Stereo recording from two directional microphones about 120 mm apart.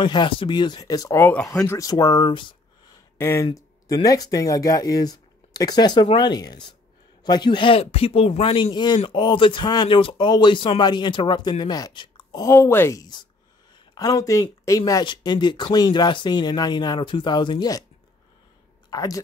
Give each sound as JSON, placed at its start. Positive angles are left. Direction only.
{"t": 0.0, "sound": "speech", "side_deg": 40}
{"t": 3.2, "sound": "speech", "side_deg": 25}
{"t": 12.4, "sound": "speech", "side_deg": 20}
{"t": 18.9, "sound": "speech", "side_deg": 30}